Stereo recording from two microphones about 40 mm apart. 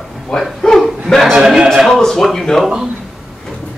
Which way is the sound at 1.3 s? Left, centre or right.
Centre.